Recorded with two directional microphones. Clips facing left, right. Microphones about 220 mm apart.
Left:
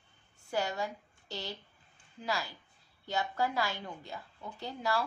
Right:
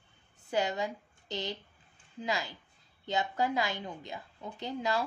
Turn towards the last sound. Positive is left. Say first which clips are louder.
# right 2 dB
turn(degrees=-20)  # may be behind; listen again after turning